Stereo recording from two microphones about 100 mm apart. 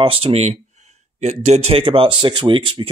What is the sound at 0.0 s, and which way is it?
Speech, 70° right (ahead or behind).